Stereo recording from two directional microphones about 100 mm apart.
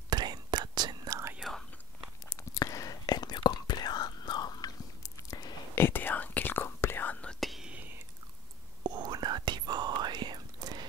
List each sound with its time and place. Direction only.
0.1 s whispering: 45° right (ahead or behind)
1.4 s whispering: centre (ahead or behind)
2.2 s whispering: 35° left (ahead or behind); by 7.3 s 15° left (ahead or behind)
7.3 s whispering: centre (ahead or behind)
7.7 s whispering: 15° right (ahead or behind)
8.8 s whispering: 45° right (ahead or behind)